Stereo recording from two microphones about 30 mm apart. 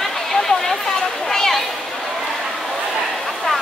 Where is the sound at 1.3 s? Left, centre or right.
Centre.